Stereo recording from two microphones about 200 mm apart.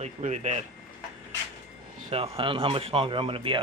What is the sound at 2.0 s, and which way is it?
Speech, 30° right (ahead or behind).